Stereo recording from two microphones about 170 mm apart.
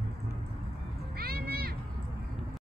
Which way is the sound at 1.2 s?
65° right (ahead or behind).